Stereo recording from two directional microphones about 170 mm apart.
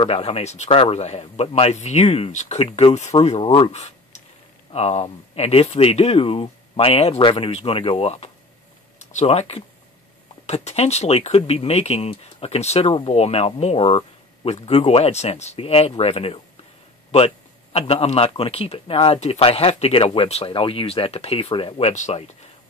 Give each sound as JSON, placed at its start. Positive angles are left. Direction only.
{"t": 0.0, "sound": "speech", "side_deg": 35}
{"t": 17.7, "sound": "speech", "side_deg": 40}